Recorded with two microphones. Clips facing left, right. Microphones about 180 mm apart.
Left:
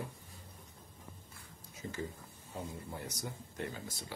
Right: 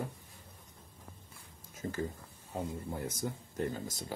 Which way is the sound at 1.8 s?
45° right (ahead or behind).